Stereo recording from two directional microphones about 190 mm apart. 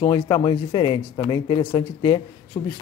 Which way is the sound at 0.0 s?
25° left (ahead or behind).